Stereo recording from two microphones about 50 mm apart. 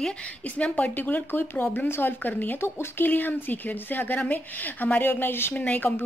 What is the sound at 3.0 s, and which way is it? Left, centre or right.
Speech, left.